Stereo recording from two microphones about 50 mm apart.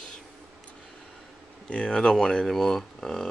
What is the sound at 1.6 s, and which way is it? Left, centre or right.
A man's voice, left.